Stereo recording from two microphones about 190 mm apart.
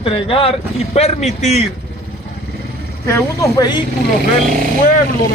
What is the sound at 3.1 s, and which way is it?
Speech, 15° left (ahead or behind).